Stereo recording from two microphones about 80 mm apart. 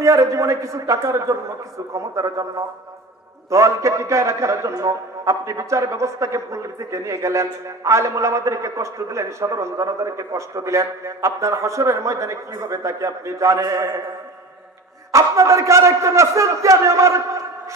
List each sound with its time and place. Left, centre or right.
0.0 s a man's voice: right
15.1 s a man's voice: right